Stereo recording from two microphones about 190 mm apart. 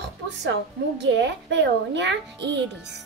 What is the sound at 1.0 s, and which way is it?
A child's voice, 65° right (ahead or behind).